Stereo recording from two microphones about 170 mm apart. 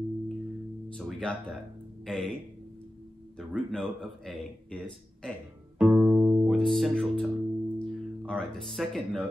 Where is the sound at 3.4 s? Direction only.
Centre (ahead or behind).